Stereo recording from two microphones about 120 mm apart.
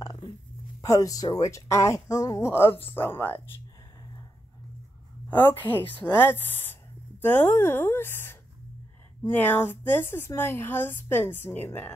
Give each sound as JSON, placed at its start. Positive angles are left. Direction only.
{"t": 0.8, "sound": "speech", "side_deg": 30}
{"t": 5.3, "sound": "speech", "side_deg": 15}